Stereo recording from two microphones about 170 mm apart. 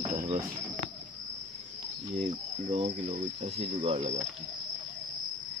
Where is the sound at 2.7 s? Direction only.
40° right (ahead or behind).